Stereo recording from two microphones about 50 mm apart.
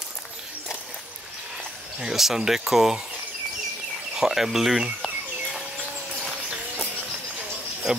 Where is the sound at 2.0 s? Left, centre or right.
Centre.